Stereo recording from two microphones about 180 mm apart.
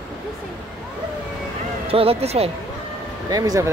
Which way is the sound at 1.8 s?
30° right (ahead or behind).